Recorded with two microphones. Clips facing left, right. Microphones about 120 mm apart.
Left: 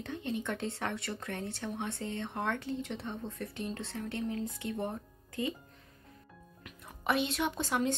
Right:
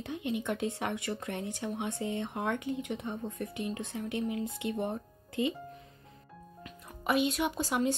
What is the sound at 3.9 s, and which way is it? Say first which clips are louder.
Speech: right 2 dB; 15° right (ahead or behind).